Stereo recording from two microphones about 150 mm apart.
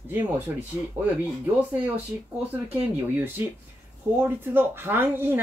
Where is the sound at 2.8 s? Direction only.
15° right (ahead or behind).